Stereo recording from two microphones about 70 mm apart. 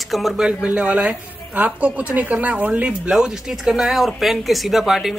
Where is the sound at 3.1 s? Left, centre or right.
Centre.